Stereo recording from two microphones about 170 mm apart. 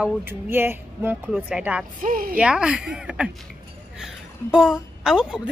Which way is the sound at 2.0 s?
55° right (ahead or behind).